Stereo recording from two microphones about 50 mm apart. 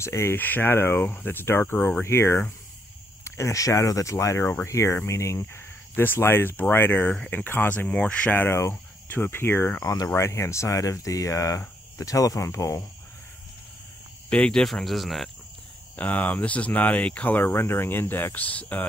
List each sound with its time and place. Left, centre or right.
0.0 s speech: left
0.4 s speech: left
2.0 s speech: left
3.3 s speech: left
5.9 s speech: left
7.7 s speech: left
8.3 s speech: left
9.8 s speech: left
14.3 s speech: left
14.6 s speech: centre
16.0 s speech: left
17.4 s speech: left